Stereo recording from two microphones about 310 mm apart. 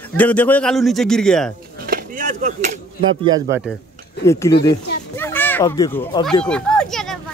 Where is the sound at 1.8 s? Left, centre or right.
Right.